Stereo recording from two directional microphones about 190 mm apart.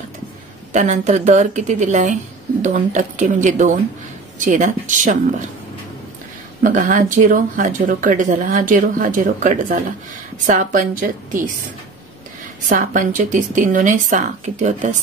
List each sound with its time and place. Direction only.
0.7 s a woman's voice: 40° right (ahead or behind)
6.6 s speech: 45° right (ahead or behind)
12.6 s speech: 45° right (ahead or behind)